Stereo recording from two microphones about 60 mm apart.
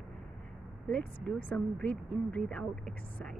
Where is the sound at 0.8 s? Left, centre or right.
Centre.